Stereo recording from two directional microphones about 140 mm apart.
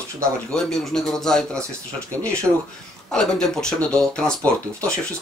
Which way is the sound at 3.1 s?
5° left (ahead or behind).